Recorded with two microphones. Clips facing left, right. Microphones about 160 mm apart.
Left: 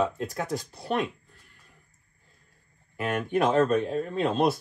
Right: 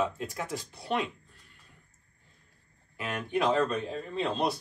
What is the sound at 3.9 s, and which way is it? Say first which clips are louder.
Speech: left 6 dB; 55° left (ahead or behind).